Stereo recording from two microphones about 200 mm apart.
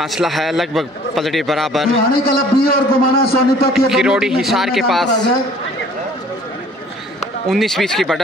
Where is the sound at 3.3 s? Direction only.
50° left (ahead or behind).